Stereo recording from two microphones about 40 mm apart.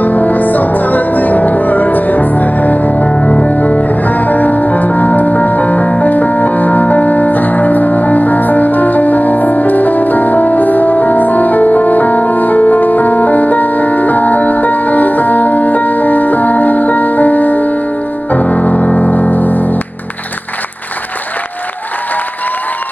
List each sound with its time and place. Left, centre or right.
0.0 s music: left
2.9 s music: left
4.0 s music: left
18.3 s music: left
19.3 s music: left